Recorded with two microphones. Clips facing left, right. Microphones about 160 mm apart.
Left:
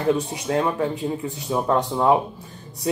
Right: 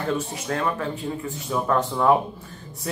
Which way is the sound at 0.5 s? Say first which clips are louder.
Left 4 dB; 20° left (ahead or behind).